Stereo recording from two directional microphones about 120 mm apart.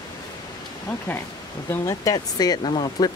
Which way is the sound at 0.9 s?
10° left (ahead or behind).